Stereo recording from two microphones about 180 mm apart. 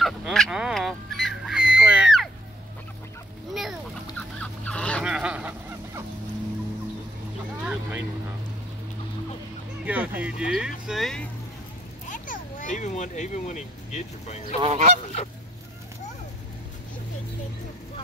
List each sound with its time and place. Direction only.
0.0 s fowl: centre (ahead or behind)
3.5 s fowl: centre (ahead or behind)
5.0 s honk: 5° right (ahead or behind)
7.6 s vehicle: 5° right (ahead or behind)
9.8 s music: 10° right (ahead or behind)
12.1 s vehicle: 45° left (ahead or behind)
14.6 s goose: 35° right (ahead or behind)